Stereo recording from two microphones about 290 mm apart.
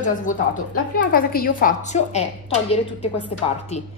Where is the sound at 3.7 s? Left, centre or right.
Left.